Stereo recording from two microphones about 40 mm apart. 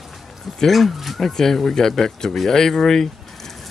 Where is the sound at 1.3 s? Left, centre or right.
Centre.